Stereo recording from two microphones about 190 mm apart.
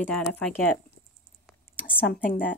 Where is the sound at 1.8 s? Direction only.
10° left (ahead or behind).